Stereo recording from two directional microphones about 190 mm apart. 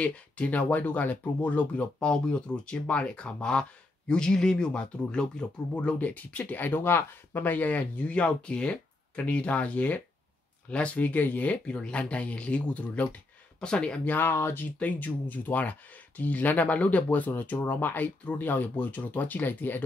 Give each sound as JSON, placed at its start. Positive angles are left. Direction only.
{"t": 0.0, "sound": "speech", "side_deg": 5}